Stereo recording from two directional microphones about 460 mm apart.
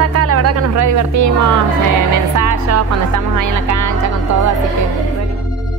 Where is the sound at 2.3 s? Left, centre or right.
Right.